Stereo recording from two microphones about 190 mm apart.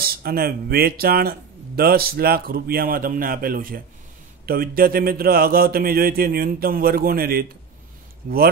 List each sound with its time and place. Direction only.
0.0 s speech: 50° right (ahead or behind)